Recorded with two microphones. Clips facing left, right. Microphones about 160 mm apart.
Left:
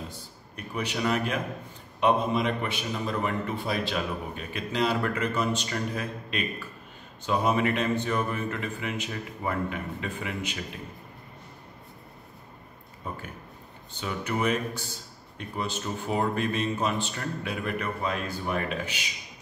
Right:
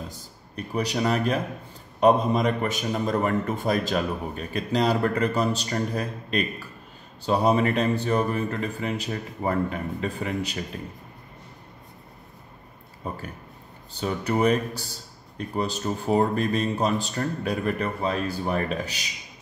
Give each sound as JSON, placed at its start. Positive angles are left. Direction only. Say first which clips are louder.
{"t": 0.1, "sound": "a man's voice", "louder": "right 3 dB", "side_deg": -35}
{"t": 13.9, "sound": "a man's voice", "louder": "right 5 dB", "side_deg": -35}